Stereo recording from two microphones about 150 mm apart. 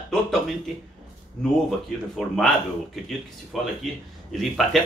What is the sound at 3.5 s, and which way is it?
Speech, centre (ahead or behind).